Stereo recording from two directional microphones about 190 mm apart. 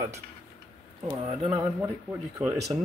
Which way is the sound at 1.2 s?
30° right (ahead or behind).